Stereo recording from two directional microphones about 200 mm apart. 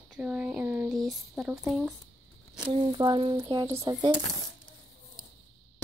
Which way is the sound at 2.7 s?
25° right (ahead or behind).